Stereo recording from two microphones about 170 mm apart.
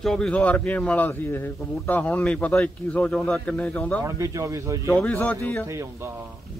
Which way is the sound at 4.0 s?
20° right (ahead or behind).